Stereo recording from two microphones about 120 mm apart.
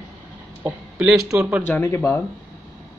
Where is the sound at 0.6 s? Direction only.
10° right (ahead or behind).